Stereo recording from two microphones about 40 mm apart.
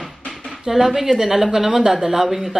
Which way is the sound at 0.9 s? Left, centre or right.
Centre.